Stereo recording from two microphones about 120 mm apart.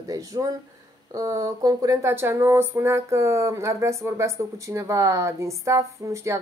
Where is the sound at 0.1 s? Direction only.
30° right (ahead or behind).